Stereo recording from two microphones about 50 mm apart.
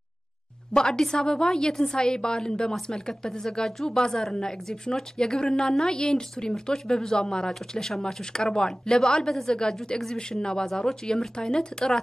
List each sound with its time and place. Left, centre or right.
0.7 s a woman's voice: centre